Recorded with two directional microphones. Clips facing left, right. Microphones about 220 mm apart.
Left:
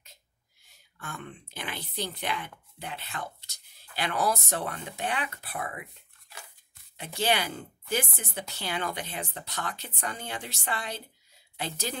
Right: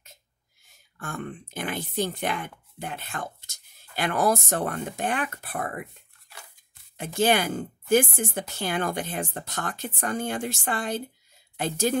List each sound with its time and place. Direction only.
0.9 s speech: 50° right (ahead or behind)
7.0 s speech: 50° right (ahead or behind)